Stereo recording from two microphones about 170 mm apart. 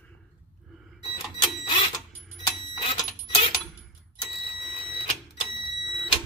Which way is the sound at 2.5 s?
25° left (ahead or behind).